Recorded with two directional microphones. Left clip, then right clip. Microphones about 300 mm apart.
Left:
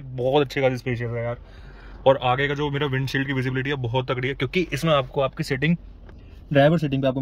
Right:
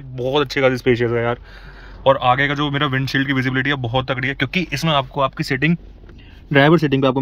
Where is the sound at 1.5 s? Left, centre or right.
Centre.